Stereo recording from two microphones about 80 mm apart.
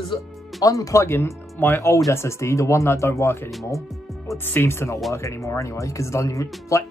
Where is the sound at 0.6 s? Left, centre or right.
Left.